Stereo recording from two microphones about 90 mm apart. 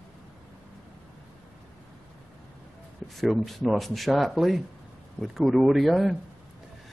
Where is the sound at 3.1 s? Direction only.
Centre (ahead or behind).